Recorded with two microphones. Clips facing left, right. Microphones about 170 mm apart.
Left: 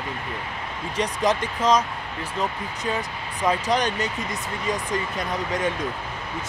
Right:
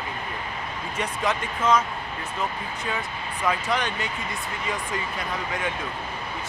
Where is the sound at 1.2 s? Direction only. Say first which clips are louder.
Left 3 dB; 40° left (ahead or behind).